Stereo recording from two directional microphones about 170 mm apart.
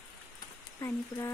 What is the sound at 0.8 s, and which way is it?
Speech, 15° left (ahead or behind).